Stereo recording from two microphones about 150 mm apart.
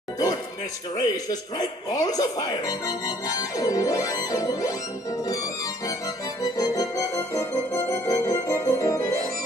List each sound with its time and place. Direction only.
0.9 s speech: 25° left (ahead or behind)
6.5 s music: 25° left (ahead or behind)